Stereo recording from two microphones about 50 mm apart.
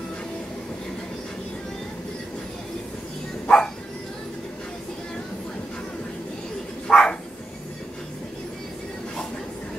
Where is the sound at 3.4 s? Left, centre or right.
Centre.